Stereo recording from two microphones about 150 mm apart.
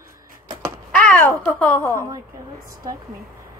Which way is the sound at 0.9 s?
5° left (ahead or behind).